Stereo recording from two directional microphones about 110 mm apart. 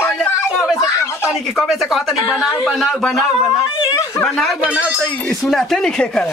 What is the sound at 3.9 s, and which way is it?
Snicker, 25° left (ahead or behind).